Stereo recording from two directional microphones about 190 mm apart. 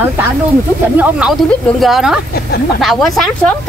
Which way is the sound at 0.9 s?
5° right (ahead or behind).